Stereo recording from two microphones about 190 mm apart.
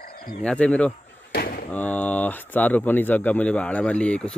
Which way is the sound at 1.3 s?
50° left (ahead or behind).